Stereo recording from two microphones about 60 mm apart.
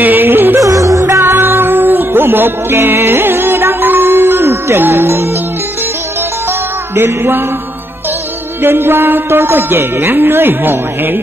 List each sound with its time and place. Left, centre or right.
0.0 s music: right
0.6 s music: right
1.2 s music: right
7.0 s speech: right
8.6 s speech: right